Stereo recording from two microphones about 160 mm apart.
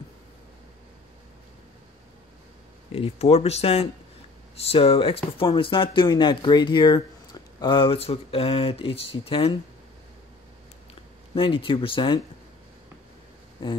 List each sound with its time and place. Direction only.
2.9 s speech: 40° left (ahead or behind)
11.3 s speech: 35° left (ahead or behind)